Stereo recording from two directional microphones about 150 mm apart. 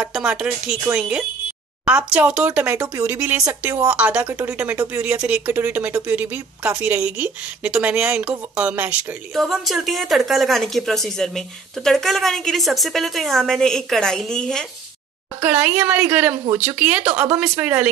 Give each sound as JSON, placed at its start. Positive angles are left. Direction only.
{"t": 0.0, "sound": "speech", "side_deg": -5}
{"t": 15.4, "sound": "speech", "side_deg": -10}